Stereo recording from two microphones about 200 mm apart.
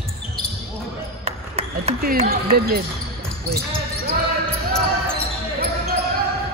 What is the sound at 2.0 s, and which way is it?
Speech, 45° right (ahead or behind).